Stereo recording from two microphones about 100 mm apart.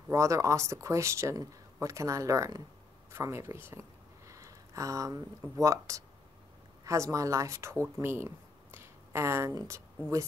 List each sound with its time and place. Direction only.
0.1 s speech: 30° right (ahead or behind)